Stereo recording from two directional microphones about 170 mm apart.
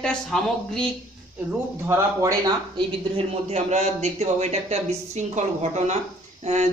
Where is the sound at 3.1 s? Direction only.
40° right (ahead or behind).